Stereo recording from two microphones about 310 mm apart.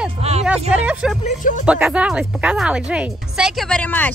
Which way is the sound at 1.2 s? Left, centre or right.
Left.